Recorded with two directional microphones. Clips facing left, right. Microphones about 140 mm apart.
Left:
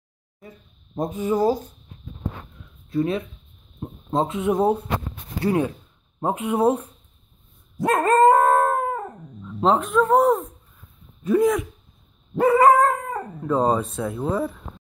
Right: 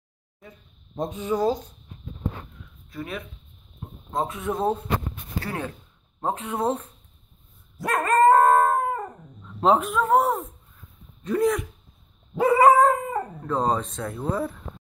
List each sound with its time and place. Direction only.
1.2 s speech: 5° left (ahead or behind)
2.9 s speech: 30° left (ahead or behind); by 6.9 s 10° left (ahead or behind)
7.7 s dog: 25° left (ahead or behind)
8.3 s howl: 5° left (ahead or behind)
11.2 s speech: centre (ahead or behind)
12.4 s dog: 5° right (ahead or behind)
13.4 s speech: 5° left (ahead or behind)